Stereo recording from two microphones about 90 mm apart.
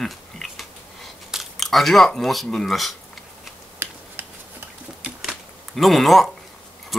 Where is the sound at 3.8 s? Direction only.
25° right (ahead or behind).